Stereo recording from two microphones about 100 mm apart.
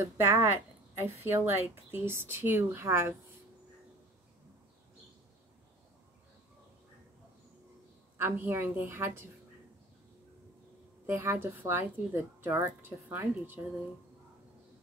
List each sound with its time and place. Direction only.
0.0 s a woman's voice: 25° right (ahead or behind)
8.2 s a woman's voice: 25° right (ahead or behind)
11.1 s a woman's voice: 20° right (ahead or behind)